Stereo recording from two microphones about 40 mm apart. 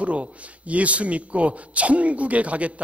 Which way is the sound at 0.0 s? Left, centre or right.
Right.